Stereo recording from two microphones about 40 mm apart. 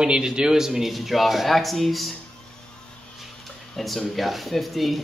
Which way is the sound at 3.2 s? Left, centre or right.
Centre.